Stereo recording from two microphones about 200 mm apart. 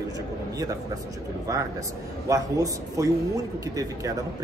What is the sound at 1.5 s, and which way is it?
Speech, 15° right (ahead or behind).